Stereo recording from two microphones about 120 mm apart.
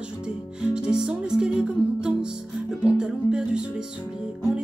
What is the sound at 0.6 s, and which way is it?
Music, 5° right (ahead or behind).